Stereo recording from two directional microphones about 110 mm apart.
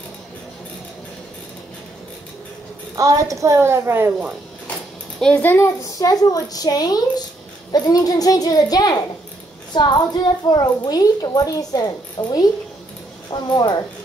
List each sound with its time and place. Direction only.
3.0 s a woman's voice: 30° right (ahead or behind)
5.2 s a child's voice: 15° left (ahead or behind)
5.9 s a woman's voice: 35° left (ahead or behind)